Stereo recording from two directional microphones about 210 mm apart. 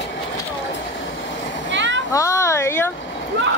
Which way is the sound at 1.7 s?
60° right (ahead or behind).